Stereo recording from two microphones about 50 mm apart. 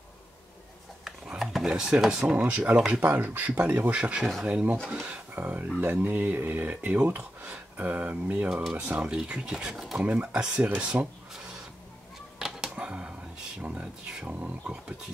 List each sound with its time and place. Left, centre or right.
1.4 s a sound: centre
1.7 s speech: centre
2.3 s speech: right
3.0 s speech: right
3.9 s speech: right
5.0 s speech: right
8.7 s speech: right
9.9 s speech: right
10.9 s speech: right
12.4 s music: centre
12.7 s a sound: right
13.6 s speech: right